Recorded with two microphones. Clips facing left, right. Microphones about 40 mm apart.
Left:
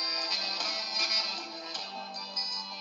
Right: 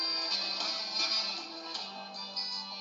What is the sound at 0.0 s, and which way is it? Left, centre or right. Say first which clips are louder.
Music: left 2 dB; left.